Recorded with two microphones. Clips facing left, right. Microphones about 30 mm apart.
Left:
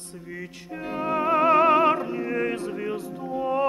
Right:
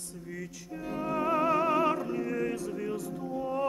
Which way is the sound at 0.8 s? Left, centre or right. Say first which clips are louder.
Left 6 dB; left.